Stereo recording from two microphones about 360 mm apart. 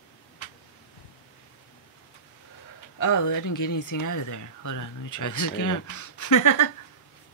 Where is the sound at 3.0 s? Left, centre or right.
Left.